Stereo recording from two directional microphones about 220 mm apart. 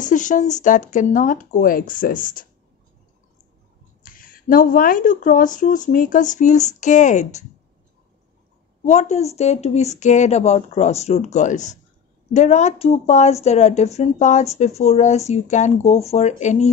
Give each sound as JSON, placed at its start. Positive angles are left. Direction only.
{"t": 0.0, "sound": "speech", "side_deg": 35}
{"t": 4.0, "sound": "speech", "side_deg": 40}
{"t": 8.8, "sound": "speech", "side_deg": 30}